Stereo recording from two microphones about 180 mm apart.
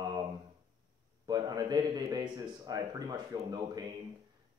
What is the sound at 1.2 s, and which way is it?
A man's voice, 20° right (ahead or behind).